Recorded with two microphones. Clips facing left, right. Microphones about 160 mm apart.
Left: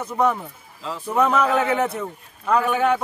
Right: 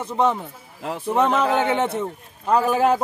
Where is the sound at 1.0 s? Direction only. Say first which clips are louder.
Even; 25° right (ahead or behind).